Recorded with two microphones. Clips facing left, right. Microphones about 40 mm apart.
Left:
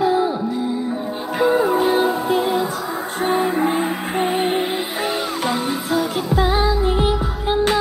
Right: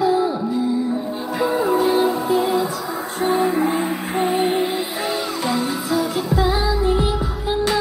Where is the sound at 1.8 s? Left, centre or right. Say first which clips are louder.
Even; left.